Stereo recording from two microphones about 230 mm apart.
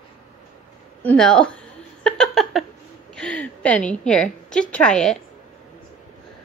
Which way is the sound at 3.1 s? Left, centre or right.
Centre.